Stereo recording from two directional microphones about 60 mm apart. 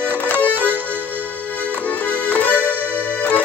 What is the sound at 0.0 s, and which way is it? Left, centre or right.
Music, left.